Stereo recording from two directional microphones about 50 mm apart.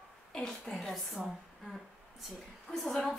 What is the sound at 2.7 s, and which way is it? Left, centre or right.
Speech, centre.